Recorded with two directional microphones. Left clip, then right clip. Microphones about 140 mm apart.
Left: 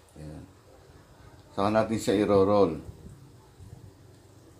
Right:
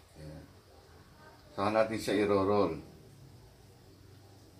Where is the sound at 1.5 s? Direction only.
90° left.